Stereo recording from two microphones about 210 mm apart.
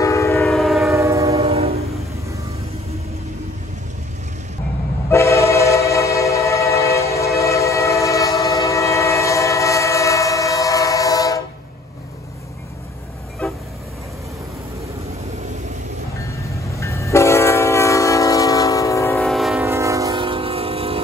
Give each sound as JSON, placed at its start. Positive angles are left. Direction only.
{"t": 0.0, "sound": "train", "side_deg": 15}
{"t": 0.5, "sound": "train", "side_deg": 0}
{"t": 0.9, "sound": "train", "side_deg": -15}
{"t": 1.3, "sound": "train", "side_deg": -30}
{"t": 5.1, "sound": "train", "side_deg": 15}
{"t": 13.4, "sound": "vehicle", "side_deg": 5}
{"t": 16.8, "sound": "train", "side_deg": 15}
{"t": 19.2, "sound": "train", "side_deg": 0}
{"t": 19.6, "sound": "train", "side_deg": -15}